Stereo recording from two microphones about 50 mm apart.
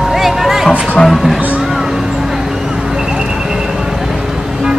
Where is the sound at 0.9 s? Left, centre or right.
Centre.